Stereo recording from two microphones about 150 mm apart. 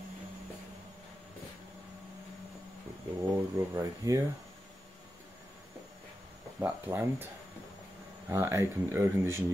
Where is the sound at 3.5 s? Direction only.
20° right (ahead or behind).